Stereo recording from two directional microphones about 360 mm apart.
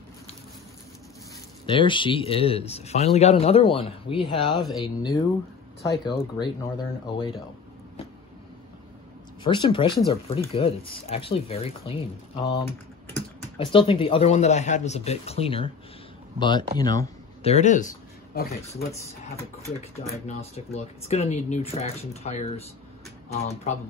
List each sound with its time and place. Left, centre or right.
1.7 s a man's voice: centre
9.4 s a man's voice: centre
13.6 s a man's voice: centre
20.0 s a man's voice: centre